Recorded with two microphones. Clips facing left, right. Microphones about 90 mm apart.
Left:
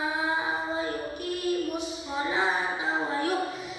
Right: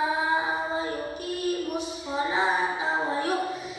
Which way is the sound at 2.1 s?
20° right (ahead or behind).